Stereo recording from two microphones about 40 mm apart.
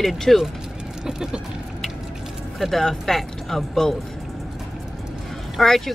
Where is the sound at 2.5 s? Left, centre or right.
Centre.